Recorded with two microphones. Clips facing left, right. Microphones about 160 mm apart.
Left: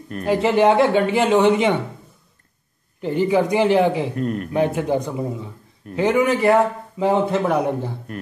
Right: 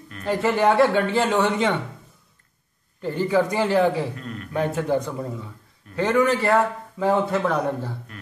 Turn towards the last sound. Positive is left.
turn(degrees=15)  # may be behind; listen again after turning